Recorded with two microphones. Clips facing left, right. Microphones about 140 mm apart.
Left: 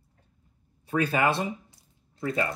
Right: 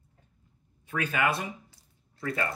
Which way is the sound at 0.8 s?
35° left (ahead or behind).